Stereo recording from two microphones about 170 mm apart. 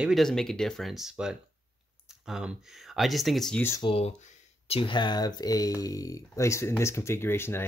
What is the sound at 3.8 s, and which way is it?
Speech, 35° left (ahead or behind).